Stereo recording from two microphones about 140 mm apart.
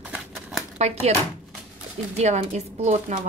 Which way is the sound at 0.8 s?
50° right (ahead or behind).